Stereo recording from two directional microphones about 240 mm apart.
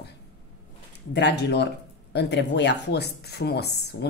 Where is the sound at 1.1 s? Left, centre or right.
Left.